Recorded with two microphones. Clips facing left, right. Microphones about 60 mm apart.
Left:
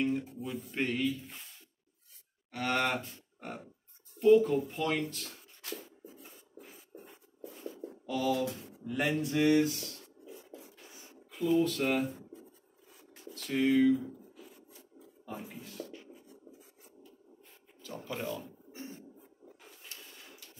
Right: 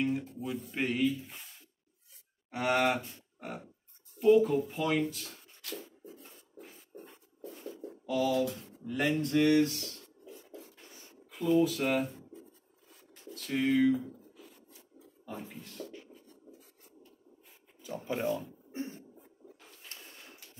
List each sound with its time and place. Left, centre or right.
0.2 s speech: centre
2.5 s speech: centre
5.8 s a sound: centre
8.5 s speech: centre
10.6 s a sound: centre
11.2 s speech: centre
14.0 s a sound: centre
15.2 s speech: centre
16.0 s writing: centre
17.8 s speech: centre
18.7 s a sound: right
19.9 s printer: right